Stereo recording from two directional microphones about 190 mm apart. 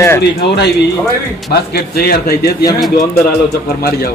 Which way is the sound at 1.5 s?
55° left (ahead or behind).